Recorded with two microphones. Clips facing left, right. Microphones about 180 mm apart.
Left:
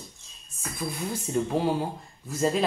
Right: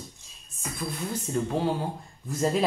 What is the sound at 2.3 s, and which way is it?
Speech, centre (ahead or behind).